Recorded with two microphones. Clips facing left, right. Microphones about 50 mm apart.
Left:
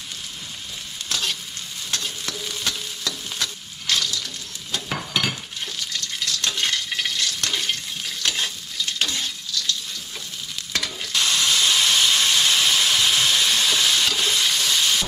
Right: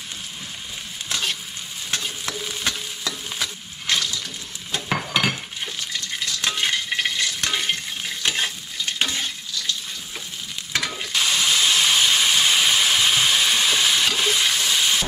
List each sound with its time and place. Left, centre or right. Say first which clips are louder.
1.0 s stir: right 1 dB; centre
11.0 s steam: left 1 dB; centre